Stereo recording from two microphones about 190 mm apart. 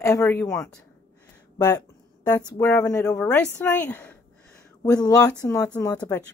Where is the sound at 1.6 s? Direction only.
20° left (ahead or behind).